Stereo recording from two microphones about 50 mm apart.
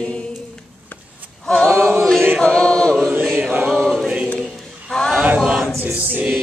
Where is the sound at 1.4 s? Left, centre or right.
Centre.